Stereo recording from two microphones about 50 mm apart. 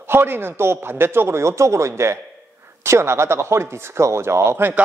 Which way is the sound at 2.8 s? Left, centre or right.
Right.